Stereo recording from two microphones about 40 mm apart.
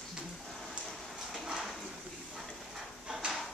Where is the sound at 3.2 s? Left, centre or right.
Right.